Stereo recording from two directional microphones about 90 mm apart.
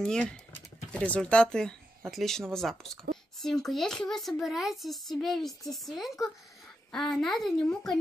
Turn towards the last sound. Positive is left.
turn(degrees=0)  # may be behind; listen again after turning